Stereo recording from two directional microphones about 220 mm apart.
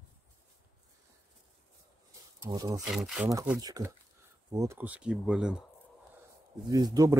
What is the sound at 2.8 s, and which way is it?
Speech, centre (ahead or behind).